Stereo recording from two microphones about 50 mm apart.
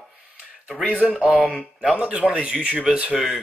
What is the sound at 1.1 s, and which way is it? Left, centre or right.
Speech, centre.